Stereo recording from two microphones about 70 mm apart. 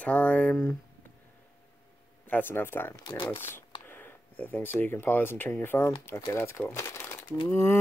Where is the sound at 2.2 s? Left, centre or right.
Left.